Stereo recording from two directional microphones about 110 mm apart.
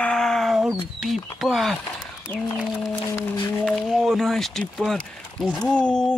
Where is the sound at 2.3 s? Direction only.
20° left (ahead or behind).